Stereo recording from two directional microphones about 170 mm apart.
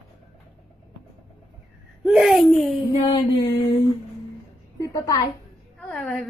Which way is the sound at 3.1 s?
30° left (ahead or behind).